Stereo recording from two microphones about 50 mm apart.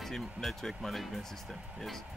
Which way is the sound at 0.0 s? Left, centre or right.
Centre.